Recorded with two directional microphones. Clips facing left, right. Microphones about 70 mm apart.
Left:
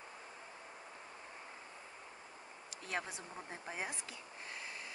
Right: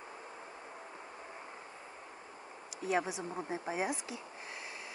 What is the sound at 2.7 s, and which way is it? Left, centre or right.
Speech, centre.